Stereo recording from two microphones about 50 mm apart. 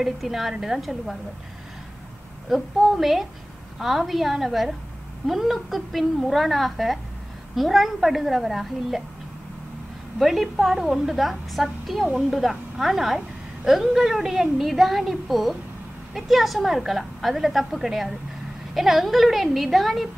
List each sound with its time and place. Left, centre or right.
0.0 s a woman's voice: centre
2.5 s a woman's voice: centre
10.1 s a woman's voice: centre